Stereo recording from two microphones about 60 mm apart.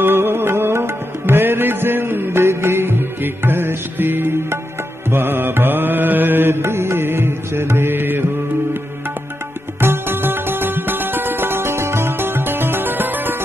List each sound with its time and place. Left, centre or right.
0.0 s music: right
9.8 s music: right